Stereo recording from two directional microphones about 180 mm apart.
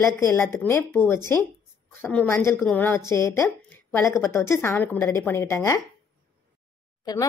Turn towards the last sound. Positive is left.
turn(degrees=20)  # may be behind; listen again after turning